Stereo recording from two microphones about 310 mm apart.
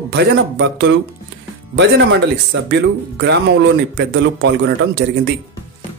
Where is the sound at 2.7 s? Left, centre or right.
Right.